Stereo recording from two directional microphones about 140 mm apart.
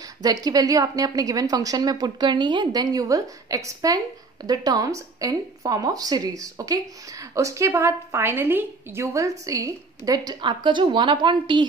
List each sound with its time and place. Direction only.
0.2 s a woman's voice: 25° right (ahead or behind)